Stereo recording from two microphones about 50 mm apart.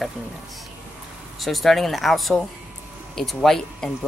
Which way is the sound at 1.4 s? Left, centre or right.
Centre.